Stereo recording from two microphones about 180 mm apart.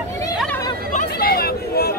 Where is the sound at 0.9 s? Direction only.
50° left (ahead or behind).